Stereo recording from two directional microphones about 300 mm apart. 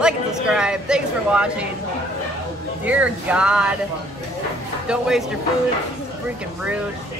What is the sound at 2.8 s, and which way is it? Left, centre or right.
Speech, centre.